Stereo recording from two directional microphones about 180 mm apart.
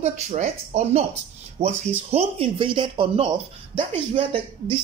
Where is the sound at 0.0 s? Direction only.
40° right (ahead or behind).